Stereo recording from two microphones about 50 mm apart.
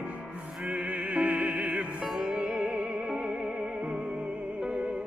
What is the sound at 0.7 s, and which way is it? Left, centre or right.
Music, right.